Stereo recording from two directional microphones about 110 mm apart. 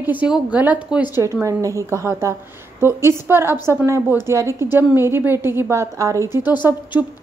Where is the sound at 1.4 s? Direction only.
30° right (ahead or behind).